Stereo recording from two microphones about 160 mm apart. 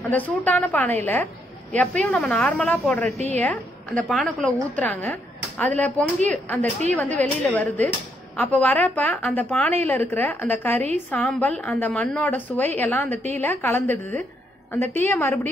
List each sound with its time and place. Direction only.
0.1 s a woman's voice: 10° left (ahead or behind)